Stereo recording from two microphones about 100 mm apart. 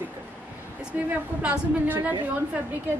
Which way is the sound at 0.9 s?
15° right (ahead or behind).